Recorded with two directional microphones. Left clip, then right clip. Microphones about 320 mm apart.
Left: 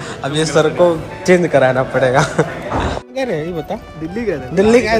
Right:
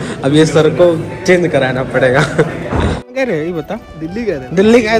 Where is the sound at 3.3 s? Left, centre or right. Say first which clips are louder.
Right 3 dB; centre.